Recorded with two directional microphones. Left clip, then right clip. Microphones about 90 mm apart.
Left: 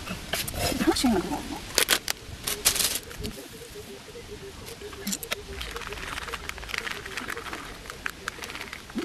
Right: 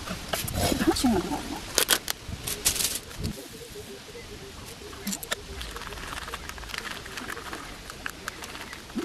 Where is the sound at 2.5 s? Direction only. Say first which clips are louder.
Left 3 dB; 20° left (ahead or behind).